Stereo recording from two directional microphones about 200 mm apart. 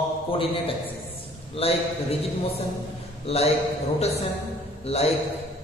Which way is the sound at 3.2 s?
30° left (ahead or behind).